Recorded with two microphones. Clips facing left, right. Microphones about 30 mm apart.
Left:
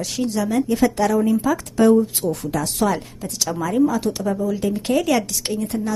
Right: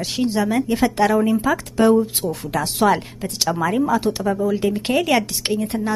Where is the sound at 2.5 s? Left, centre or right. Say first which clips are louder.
Right 6 dB; right.